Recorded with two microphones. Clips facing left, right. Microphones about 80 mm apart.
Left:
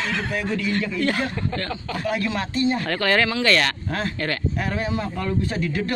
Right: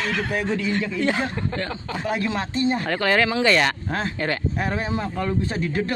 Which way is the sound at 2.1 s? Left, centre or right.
Right.